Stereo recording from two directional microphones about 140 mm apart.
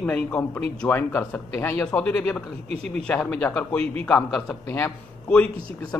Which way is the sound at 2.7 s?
50° right (ahead or behind).